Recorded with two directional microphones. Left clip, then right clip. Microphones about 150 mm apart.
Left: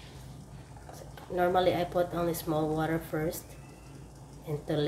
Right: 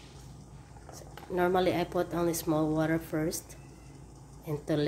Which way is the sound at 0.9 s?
35° right (ahead or behind).